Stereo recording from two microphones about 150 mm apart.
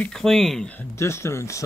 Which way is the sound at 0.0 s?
5° left (ahead or behind).